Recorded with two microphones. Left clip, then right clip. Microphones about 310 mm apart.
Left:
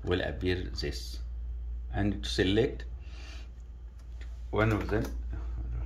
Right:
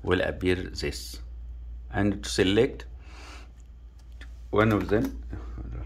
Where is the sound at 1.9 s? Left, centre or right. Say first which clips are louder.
Right 5 dB; centre.